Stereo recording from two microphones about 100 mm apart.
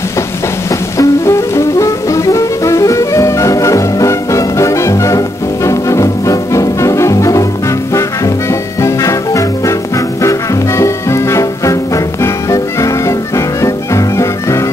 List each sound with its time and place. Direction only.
0.9 s music: 30° left (ahead or behind)
8.5 s music: 30° left (ahead or behind)